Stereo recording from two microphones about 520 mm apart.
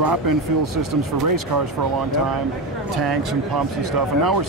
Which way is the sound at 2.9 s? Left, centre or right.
Right.